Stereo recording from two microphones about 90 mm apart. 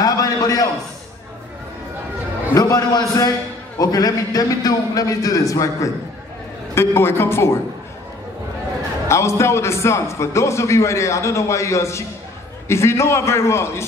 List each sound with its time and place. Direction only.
0.0 s a sound: 45° left (ahead or behind)
2.5 s a man's voice: 35° left (ahead or behind)
6.7 s a woman's voice: 25° left (ahead or behind)
9.0 s a man's voice: 30° left (ahead or behind)